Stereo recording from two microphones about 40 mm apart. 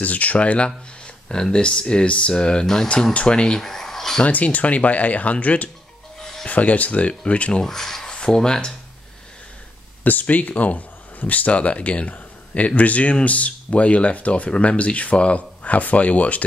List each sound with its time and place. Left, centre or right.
0.0 s speech: left
0.7 s speech: left
2.6 s speech: centre
3.1 s speech: left
3.5 s a sound: centre
4.2 s speech: left
7.6 s speech: centre
10.0 s speech: left